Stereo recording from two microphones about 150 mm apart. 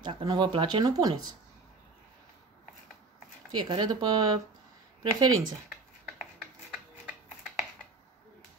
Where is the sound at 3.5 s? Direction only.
30° right (ahead or behind).